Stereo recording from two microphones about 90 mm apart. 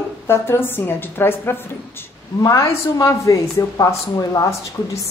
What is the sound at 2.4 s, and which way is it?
Speech, 40° left (ahead or behind).